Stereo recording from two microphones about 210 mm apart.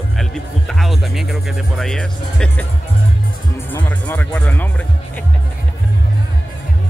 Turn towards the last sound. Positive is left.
turn(degrees=5)  # may be behind; listen again after turning